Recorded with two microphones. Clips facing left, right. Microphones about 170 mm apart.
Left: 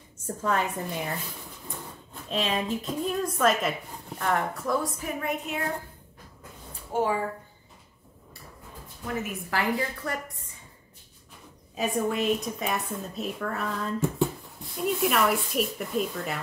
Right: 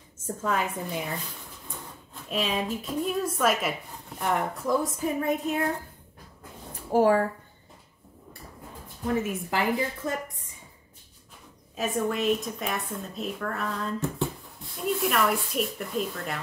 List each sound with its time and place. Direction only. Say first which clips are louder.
0.4 s a woman's voice: left 1 dB; 5° right (ahead or behind)
2.2 s a woman's voice: even; 5° right (ahead or behind)
5.0 s a sound: right 5 dB; 35° right (ahead or behind)
6.9 s a sound: right 5 dB; 35° right (ahead or behind)
9.0 s a woman's voice: right 5 dB; 25° right (ahead or behind)
11.7 s a woman's voice: left 1 dB; centre (ahead or behind)